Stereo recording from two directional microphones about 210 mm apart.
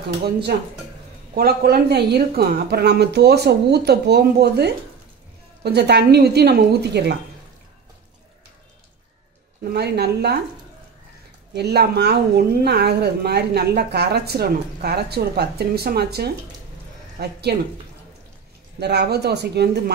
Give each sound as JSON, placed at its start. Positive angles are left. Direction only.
{"t": 1.3, "sound": "a woman's voice", "side_deg": -45}
{"t": 9.7, "sound": "a woman's voice", "side_deg": -50}
{"t": 11.5, "sound": "a woman's voice", "side_deg": -50}
{"t": 18.8, "sound": "a woman's voice", "side_deg": -50}